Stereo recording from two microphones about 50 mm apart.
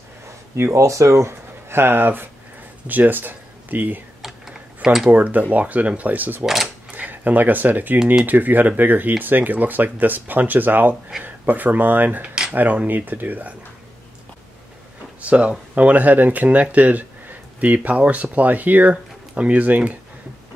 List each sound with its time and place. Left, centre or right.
0.7 s speech: right
1.7 s speech: right
4.2 s a sound: centre
4.8 s speech: centre
5.1 s speech: right
6.4 s speech: centre
6.9 s speech: right
15.2 s speech: right